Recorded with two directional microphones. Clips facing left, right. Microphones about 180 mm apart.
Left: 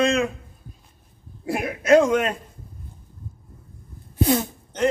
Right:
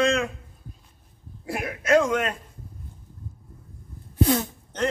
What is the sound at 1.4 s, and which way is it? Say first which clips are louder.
Speech: left 4 dB; 20° left (ahead or behind).